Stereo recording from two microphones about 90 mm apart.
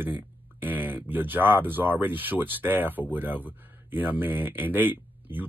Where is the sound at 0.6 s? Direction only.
20° right (ahead or behind).